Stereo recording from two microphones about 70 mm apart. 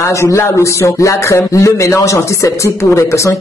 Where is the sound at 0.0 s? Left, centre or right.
Left.